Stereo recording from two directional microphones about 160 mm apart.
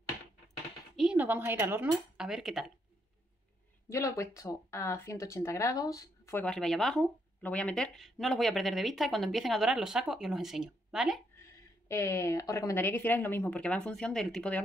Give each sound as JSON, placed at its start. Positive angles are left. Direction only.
{"t": 0.9, "sound": "speech", "side_deg": -5}
{"t": 3.9, "sound": "speech", "side_deg": 20}
{"t": 6.4, "sound": "speech", "side_deg": 5}
{"t": 11.9, "sound": "a woman's voice", "side_deg": 20}